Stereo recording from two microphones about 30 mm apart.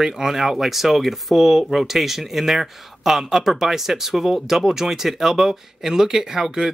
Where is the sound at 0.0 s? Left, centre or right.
Centre.